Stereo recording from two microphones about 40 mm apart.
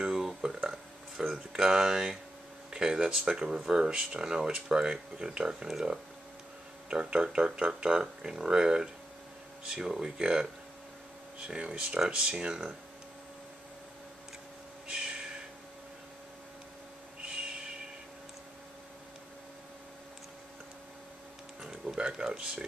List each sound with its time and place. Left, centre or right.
0.4 s burping: centre
1.3 s speech: centre
6.9 s speech: right
11.4 s speech: right
14.9 s crow: right
21.5 s a sound: centre